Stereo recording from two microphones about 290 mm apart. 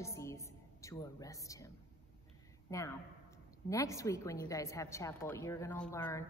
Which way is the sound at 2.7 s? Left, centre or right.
Centre.